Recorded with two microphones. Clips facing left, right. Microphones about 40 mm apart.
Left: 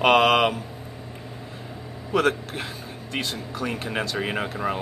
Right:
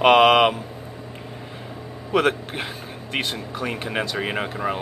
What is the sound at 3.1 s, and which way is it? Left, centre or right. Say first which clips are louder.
Speech: right 3 dB; right.